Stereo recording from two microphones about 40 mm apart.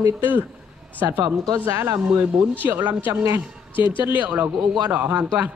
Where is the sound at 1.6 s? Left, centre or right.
Right.